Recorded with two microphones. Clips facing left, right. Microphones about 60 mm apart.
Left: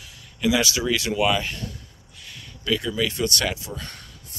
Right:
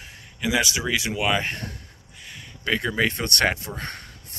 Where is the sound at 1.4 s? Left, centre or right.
Right.